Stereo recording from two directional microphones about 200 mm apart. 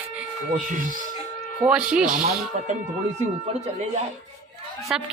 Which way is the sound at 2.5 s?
40° right (ahead or behind).